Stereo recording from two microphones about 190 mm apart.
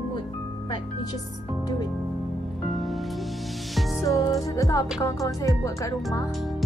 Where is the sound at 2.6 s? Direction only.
Centre (ahead or behind).